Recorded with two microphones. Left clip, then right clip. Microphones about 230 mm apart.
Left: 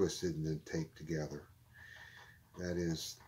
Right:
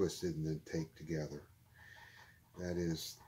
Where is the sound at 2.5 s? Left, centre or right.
Centre.